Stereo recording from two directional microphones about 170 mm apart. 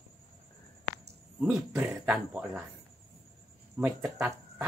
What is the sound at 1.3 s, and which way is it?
Speech, centre (ahead or behind).